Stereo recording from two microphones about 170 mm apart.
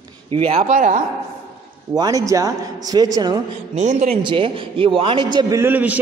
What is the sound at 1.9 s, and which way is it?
A man's voice, 20° right (ahead or behind).